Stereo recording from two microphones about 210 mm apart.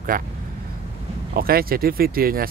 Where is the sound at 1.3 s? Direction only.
45° right (ahead or behind).